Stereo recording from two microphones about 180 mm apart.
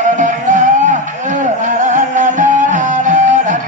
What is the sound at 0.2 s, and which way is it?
Music, 45° right (ahead or behind).